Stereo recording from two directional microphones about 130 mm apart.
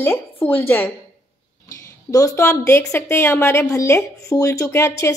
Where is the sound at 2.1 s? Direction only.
25° left (ahead or behind).